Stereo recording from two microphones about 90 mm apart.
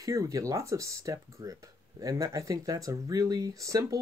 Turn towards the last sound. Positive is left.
turn(degrees=-40)  # may be behind; listen again after turning